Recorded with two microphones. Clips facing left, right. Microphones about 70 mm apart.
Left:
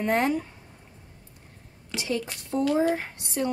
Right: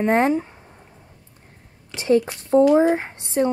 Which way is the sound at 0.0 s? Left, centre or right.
Right.